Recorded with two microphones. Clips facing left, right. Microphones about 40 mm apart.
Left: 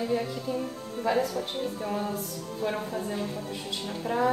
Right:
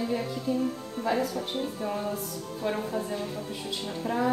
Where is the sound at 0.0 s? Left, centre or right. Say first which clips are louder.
Left 1 dB; centre.